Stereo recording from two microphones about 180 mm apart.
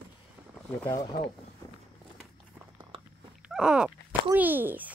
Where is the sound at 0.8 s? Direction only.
20° left (ahead or behind).